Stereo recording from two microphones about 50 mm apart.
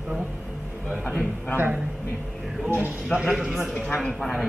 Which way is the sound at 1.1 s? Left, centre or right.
Centre.